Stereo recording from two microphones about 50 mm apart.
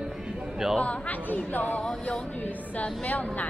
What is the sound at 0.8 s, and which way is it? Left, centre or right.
Speech, left.